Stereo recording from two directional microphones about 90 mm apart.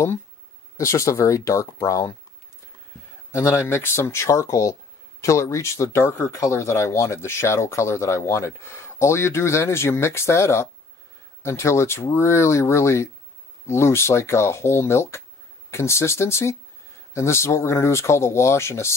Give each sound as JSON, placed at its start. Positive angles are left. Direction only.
{"t": 0.7, "sound": "speech", "side_deg": 35}
{"t": 3.3, "sound": "speech", "side_deg": 30}